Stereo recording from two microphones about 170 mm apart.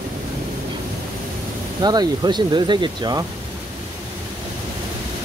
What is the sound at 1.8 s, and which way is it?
Speech, 25° right (ahead or behind).